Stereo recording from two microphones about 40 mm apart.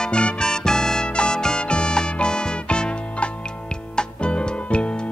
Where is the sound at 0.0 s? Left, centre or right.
Left.